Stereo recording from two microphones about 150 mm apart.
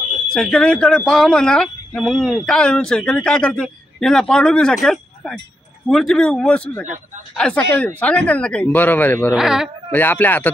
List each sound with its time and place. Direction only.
0.3 s speech: 5° left (ahead or behind)
9.4 s speech: 5° right (ahead or behind)
9.8 s speech: 10° left (ahead or behind)